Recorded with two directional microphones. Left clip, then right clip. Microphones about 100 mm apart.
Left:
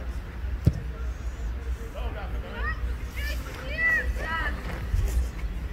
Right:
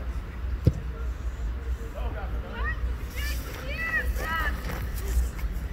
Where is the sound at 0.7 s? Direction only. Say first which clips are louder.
Right 2 dB; 25° left (ahead or behind).